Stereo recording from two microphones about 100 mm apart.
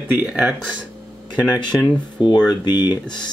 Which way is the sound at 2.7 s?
20° right (ahead or behind).